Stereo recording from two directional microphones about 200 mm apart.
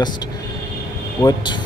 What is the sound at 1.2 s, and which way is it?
Speech, 20° left (ahead or behind).